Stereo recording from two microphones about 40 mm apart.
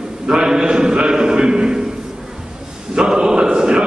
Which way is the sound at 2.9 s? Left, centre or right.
Centre.